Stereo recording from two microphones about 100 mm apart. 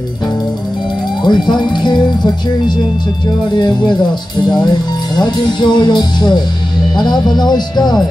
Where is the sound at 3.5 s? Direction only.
45° left (ahead or behind).